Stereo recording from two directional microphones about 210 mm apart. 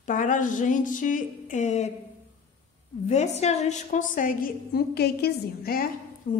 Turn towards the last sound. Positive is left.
turn(degrees=40)  # may be behind; listen again after turning